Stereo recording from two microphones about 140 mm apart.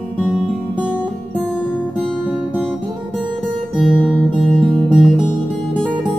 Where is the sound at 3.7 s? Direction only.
5° right (ahead or behind).